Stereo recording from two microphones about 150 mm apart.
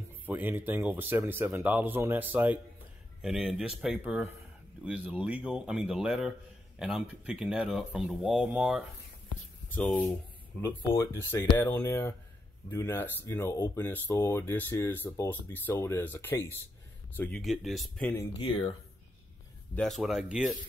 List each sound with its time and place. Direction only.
0.3 s speech: 10° right (ahead or behind)
9.8 s speech: 10° left (ahead or behind)
17.4 s speech: centre (ahead or behind)
18.4 s speech: 35° left (ahead or behind)
19.7 s speech: centre (ahead or behind)